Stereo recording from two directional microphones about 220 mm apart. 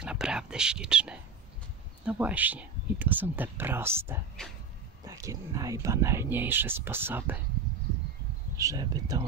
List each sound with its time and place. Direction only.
0.0 s speech: 5° right (ahead or behind)
8.5 s speech: 15° right (ahead or behind)